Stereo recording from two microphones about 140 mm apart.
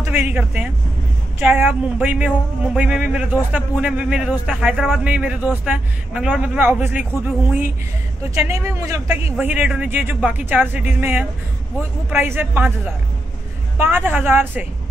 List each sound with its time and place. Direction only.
0.0 s a man's voice: 15° right (ahead or behind)